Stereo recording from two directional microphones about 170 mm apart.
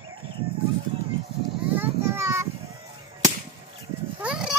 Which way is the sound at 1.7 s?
15° right (ahead or behind).